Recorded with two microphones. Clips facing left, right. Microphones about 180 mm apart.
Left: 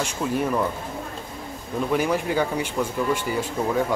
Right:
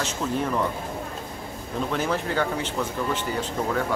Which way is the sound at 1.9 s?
10° left (ahead or behind).